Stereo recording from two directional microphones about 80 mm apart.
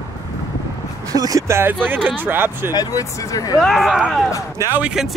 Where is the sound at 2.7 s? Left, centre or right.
Left.